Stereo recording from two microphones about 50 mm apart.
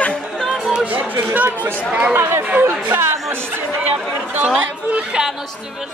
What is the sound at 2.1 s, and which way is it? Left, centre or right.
Speech, right.